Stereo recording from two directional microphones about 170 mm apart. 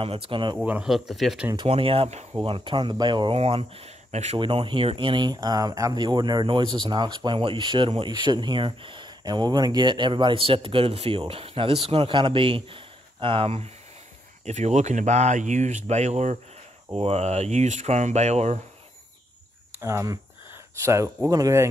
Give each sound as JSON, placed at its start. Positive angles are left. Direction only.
{"t": 0.0, "sound": "speech", "side_deg": -35}
{"t": 0.6, "sound": "speech", "side_deg": -5}
{"t": 1.7, "sound": "speech", "side_deg": -35}
{"t": 19.8, "sound": "speech", "side_deg": -15}